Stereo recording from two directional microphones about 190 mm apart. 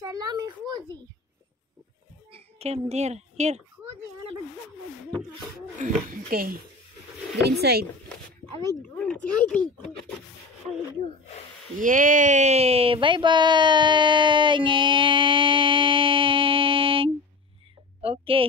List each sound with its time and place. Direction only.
0.0 s a sound: 20° right (ahead or behind)
2.3 s speech: 35° right (ahead or behind)
5.8 s speech: 40° right (ahead or behind); by 7.8 s 60° right (ahead or behind)
8.9 s speech: 5° left (ahead or behind)
11.8 s a woman's voice: 45° right (ahead or behind); by 18.4 s 30° right (ahead or behind)